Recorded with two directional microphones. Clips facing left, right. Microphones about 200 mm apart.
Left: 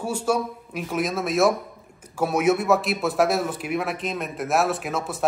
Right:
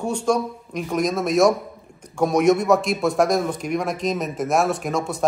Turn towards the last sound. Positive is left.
turn(degrees=5)  # may be behind; listen again after turning